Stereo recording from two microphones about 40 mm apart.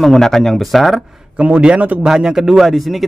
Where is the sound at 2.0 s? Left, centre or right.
Centre.